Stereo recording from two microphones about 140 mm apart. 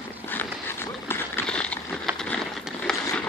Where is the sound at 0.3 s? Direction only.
15° left (ahead or behind).